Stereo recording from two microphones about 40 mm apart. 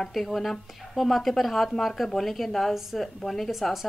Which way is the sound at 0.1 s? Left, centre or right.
Centre.